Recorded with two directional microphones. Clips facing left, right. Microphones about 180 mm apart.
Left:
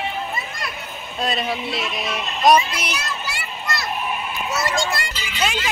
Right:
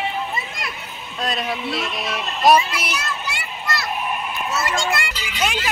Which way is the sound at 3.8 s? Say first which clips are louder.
Even; centre (ahead or behind).